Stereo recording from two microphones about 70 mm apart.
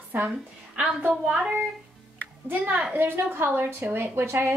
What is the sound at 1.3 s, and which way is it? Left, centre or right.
Speech, centre.